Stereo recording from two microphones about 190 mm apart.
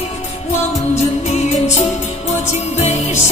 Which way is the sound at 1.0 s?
35° left (ahead or behind).